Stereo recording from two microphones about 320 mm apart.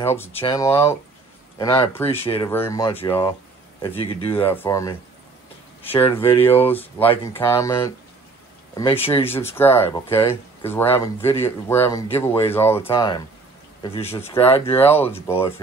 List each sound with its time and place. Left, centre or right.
0.0 s speech: centre
5.8 s a sound: centre
6.7 s speech: centre